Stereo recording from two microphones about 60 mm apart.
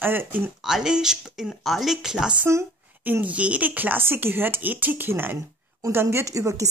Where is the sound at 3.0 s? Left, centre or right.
Right.